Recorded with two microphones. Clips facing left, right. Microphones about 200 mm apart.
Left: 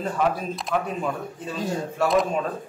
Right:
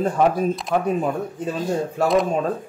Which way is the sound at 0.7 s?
45° right (ahead or behind).